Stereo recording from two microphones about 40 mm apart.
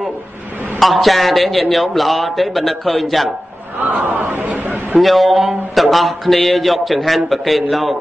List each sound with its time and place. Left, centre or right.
0.7 s a man's voice: centre
4.0 s a sound: right
5.0 s a man's voice: centre